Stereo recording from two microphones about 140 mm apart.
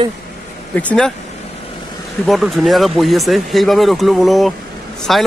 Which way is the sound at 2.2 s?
Centre (ahead or behind).